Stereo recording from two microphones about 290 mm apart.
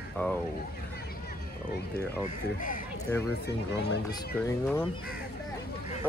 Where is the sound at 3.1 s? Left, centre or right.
Centre.